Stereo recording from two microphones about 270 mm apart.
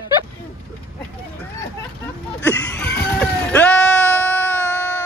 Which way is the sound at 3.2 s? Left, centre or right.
Centre.